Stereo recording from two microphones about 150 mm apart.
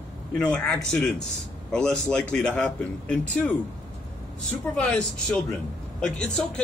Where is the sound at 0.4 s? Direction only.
5° left (ahead or behind).